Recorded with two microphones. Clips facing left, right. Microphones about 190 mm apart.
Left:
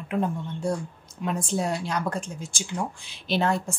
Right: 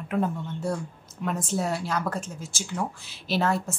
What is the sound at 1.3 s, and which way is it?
A woman's voice, 5° right (ahead or behind).